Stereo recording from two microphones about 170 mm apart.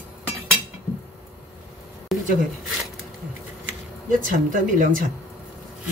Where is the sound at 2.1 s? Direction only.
Centre (ahead or behind).